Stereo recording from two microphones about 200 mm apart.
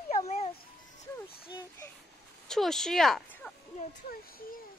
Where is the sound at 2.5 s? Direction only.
Centre (ahead or behind).